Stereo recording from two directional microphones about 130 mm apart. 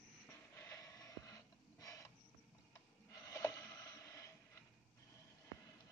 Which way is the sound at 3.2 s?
25° left (ahead or behind).